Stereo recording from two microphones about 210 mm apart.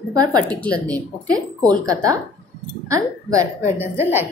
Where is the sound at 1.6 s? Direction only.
15° right (ahead or behind).